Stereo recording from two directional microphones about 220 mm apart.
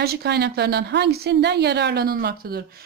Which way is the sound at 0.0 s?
45° right (ahead or behind).